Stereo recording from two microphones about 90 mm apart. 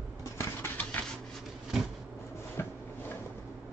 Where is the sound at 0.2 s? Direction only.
25° left (ahead or behind).